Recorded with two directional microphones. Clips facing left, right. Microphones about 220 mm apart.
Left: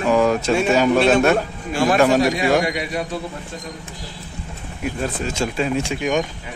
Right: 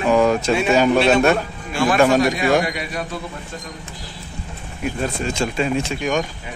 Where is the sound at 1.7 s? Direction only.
40° left (ahead or behind).